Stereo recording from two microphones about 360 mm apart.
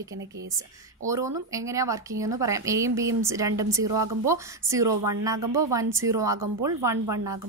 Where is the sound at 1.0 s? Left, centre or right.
Centre.